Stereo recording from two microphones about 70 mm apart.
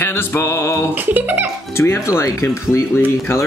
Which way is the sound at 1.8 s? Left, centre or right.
Left.